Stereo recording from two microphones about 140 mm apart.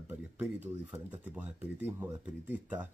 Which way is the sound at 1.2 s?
10° right (ahead or behind).